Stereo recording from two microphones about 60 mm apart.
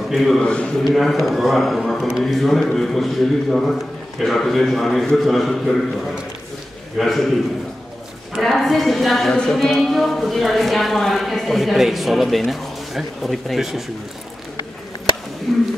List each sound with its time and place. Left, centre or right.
0.1 s speech: centre
0.4 s a man's voice: centre
0.8 s speech: centre
7.0 s speech: centre
8.4 s speech: centre
15.5 s speech: centre